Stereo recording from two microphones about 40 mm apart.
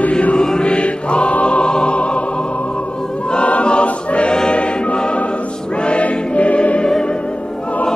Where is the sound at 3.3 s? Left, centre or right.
Left.